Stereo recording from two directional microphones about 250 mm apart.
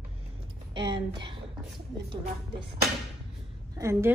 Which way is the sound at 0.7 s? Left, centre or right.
Centre.